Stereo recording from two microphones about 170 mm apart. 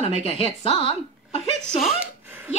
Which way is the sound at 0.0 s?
35° left (ahead or behind).